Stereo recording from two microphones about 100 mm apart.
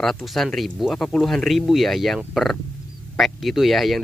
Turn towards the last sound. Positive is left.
turn(degrees=0)  # may be behind; listen again after turning